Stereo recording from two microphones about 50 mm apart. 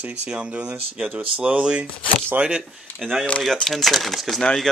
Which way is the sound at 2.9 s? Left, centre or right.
Left.